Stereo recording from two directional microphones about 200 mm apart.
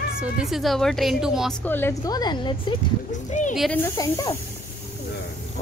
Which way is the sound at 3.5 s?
Centre (ahead or behind).